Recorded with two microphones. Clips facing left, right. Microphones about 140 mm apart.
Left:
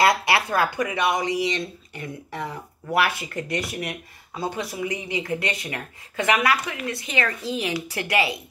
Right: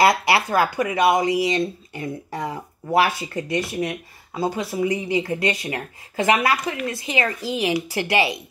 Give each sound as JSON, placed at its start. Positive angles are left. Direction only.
{"t": 0.0, "sound": "speech", "side_deg": -30}